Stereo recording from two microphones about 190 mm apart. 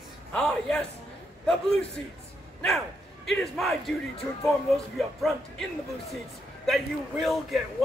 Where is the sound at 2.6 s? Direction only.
Centre (ahead or behind).